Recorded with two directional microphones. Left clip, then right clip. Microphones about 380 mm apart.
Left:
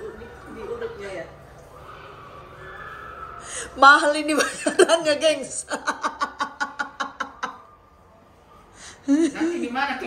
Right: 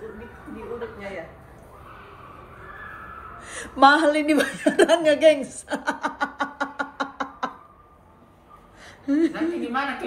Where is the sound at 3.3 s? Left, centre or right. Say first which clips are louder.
Left 1 dB; centre.